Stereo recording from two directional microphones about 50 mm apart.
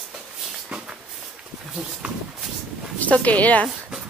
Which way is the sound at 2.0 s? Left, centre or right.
Right.